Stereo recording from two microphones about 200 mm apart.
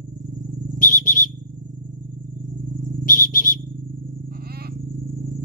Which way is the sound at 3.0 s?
45° left (ahead or behind).